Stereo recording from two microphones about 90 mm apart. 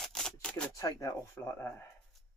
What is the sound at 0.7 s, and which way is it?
Speech, 35° left (ahead or behind).